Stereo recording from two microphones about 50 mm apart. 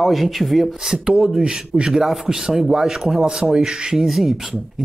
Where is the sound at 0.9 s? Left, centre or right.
Centre.